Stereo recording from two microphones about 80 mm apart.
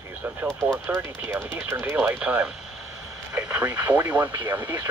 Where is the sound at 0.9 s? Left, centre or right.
Right.